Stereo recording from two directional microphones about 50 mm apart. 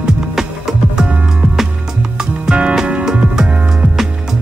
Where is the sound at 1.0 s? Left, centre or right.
Right.